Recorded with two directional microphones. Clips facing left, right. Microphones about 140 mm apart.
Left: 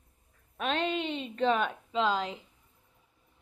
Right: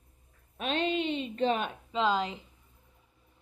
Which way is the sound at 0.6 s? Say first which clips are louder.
Even; 45° left (ahead or behind).